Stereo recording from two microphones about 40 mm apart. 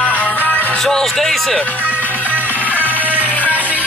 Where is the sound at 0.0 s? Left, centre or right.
Left.